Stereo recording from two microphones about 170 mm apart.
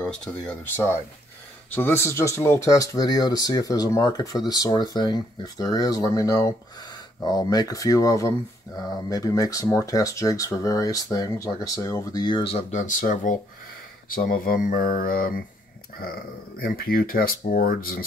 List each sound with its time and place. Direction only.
0.0 s speech: 5° left (ahead or behind); by 18.0 s 60° left (ahead or behind)